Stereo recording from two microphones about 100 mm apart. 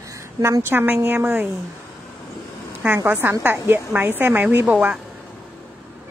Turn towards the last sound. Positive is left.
turn(degrees=-15)  # may be behind; listen again after turning